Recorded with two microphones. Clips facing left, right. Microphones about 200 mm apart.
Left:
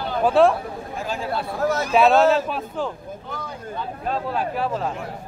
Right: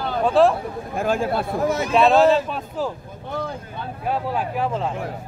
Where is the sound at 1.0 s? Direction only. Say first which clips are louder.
Right 6 dB; 50° right (ahead or behind).